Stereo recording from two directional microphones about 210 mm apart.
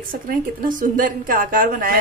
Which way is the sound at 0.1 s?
40° right (ahead or behind).